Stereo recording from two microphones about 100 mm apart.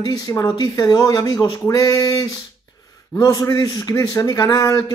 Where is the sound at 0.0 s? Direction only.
40° left (ahead or behind).